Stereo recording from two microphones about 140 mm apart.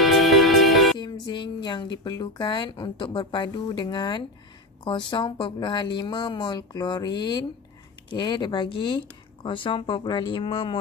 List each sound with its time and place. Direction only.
0.0 s music: centre (ahead or behind)
0.9 s a woman's voice: 30° left (ahead or behind)